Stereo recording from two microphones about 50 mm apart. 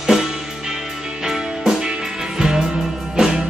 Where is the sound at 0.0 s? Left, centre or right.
Centre.